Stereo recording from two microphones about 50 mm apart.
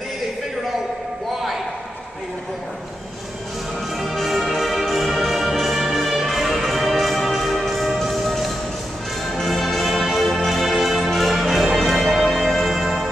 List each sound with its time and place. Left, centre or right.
4.0 s music: centre